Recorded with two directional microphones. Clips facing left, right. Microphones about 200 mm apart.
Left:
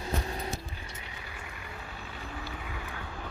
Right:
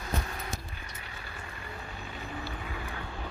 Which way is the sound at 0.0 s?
30° left (ahead or behind).